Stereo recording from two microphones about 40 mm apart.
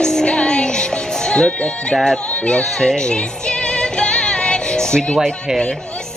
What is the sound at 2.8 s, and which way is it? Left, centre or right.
Music, centre.